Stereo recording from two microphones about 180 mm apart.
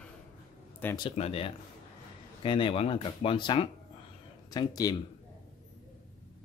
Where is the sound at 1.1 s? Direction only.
35° left (ahead or behind).